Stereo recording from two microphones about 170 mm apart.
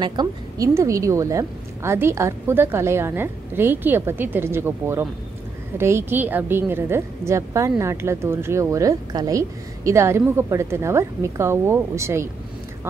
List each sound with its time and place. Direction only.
0.0 s a woman's voice: 25° right (ahead or behind)